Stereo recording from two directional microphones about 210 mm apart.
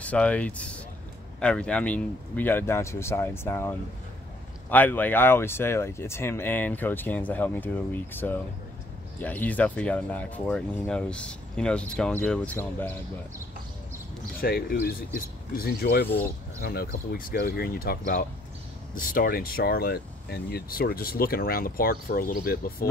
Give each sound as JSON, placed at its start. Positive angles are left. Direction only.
{"t": 0.0, "sound": "speech", "side_deg": 5}
{"t": 14.4, "sound": "speech", "side_deg": 45}